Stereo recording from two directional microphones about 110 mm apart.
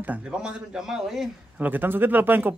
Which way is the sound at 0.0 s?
10° right (ahead or behind).